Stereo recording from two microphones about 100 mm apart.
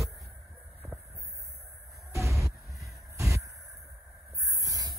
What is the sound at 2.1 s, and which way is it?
Music, 30° right (ahead or behind).